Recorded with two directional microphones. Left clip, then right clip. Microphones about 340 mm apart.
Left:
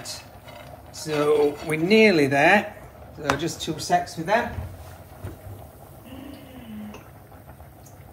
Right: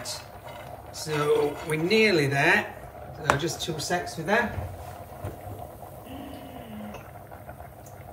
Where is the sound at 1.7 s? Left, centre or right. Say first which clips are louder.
Left 4 dB; centre.